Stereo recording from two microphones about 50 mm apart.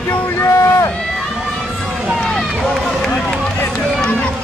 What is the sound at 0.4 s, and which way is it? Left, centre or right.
Boat, left.